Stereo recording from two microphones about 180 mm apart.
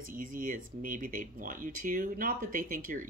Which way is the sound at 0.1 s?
50° right (ahead or behind).